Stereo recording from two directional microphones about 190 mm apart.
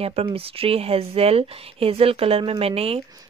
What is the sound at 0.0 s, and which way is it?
Speech, 30° right (ahead or behind).